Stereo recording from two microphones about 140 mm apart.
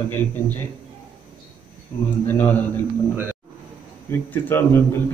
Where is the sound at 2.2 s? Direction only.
10° left (ahead or behind).